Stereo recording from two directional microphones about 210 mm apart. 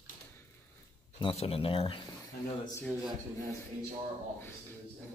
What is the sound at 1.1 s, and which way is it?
Speech, 25° left (ahead or behind).